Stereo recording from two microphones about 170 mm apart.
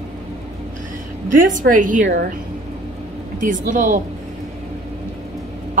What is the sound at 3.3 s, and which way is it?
Speech, 50° right (ahead or behind).